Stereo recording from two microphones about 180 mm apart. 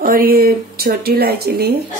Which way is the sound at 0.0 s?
55° right (ahead or behind).